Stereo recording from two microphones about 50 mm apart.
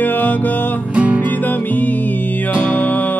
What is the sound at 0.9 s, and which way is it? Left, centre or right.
Music, right.